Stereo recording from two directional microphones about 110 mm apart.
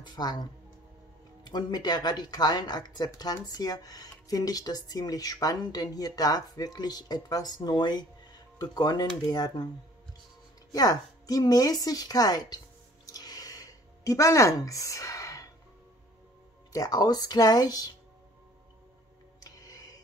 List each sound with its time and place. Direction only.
0.0 s speech: 40° left (ahead or behind)
10.7 s speech: 35° left (ahead or behind)
13.0 s a sound: 35° left (ahead or behind)
16.7 s speech: 35° left (ahead or behind)
19.4 s music: 35° left (ahead or behind)